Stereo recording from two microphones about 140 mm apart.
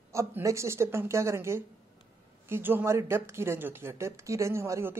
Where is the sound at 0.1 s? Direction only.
20° right (ahead or behind).